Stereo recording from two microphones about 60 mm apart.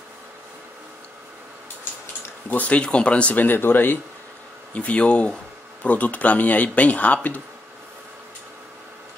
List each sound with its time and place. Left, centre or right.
2.5 s speech: left
4.7 s speech: left